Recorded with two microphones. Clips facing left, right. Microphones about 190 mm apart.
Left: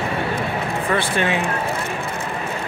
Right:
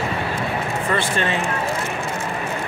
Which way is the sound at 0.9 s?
15° left (ahead or behind).